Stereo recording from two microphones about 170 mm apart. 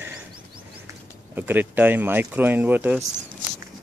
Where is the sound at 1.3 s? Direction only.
10° right (ahead or behind).